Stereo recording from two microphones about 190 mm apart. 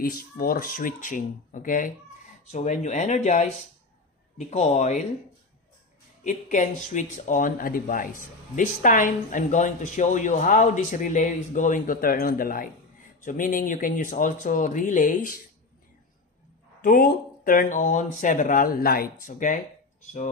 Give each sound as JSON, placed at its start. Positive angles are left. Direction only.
{"t": 0.0, "sound": "speech", "side_deg": 50}
{"t": 6.2, "sound": "speech", "side_deg": 40}
{"t": 16.8, "sound": "speech", "side_deg": 45}